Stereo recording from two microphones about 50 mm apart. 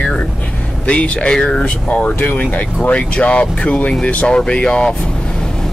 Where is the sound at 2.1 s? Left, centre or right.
Left.